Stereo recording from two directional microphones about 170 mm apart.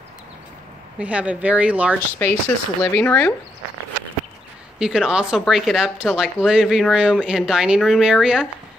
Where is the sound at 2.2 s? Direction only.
10° left (ahead or behind).